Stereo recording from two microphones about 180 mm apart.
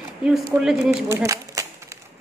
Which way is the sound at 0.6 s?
5° right (ahead or behind).